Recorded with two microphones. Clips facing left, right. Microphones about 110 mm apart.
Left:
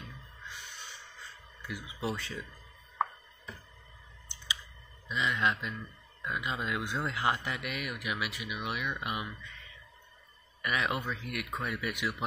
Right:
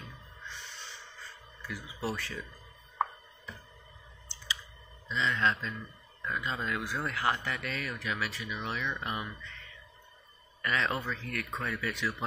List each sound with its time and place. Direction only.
1.6 s speech: 20° left (ahead or behind)
5.0 s speech: 15° left (ahead or behind)
10.6 s speech: 15° left (ahead or behind)